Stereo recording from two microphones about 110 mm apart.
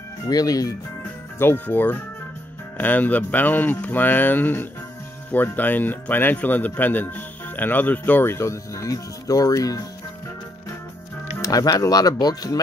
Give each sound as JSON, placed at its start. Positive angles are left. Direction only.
{"t": 0.3, "sound": "speech", "side_deg": 35}
{"t": 1.4, "sound": "speech", "side_deg": 20}
{"t": 11.4, "sound": "speech", "side_deg": 30}